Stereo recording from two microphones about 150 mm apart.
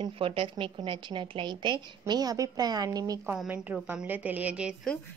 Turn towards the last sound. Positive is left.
turn(degrees=-10)  # may be behind; listen again after turning